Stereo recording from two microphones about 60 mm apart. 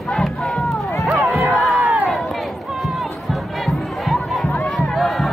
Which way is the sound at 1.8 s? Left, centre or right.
Right.